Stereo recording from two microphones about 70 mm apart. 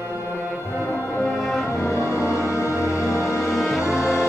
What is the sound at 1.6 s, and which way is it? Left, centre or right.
Brass instrument, left.